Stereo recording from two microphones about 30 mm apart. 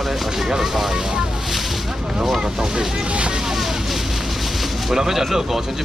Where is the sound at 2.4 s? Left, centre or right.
Right.